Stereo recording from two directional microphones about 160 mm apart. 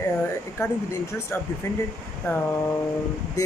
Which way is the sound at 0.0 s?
15° left (ahead or behind).